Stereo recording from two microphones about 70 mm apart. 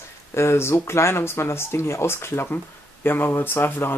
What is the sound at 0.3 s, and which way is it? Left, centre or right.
Speech, left.